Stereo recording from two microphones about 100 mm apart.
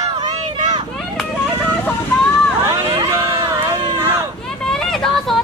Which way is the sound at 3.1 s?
35° right (ahead or behind).